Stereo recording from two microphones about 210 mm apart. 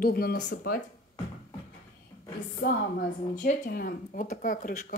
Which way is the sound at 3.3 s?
40° left (ahead or behind).